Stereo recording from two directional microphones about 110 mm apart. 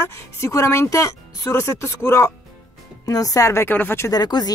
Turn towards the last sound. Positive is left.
turn(degrees=40)  # may be behind; listen again after turning